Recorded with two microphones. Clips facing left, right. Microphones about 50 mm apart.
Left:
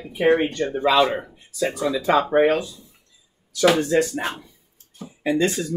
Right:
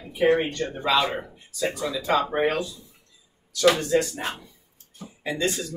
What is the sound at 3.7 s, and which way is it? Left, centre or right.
Speech, left.